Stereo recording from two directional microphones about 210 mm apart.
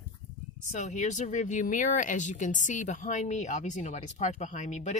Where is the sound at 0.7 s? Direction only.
35° left (ahead or behind).